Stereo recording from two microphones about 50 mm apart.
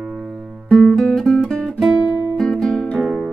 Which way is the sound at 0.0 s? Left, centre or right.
Centre.